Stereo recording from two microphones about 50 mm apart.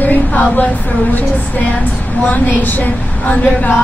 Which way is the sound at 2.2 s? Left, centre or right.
Left.